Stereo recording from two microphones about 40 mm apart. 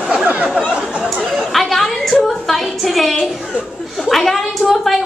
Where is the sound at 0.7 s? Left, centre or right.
Right.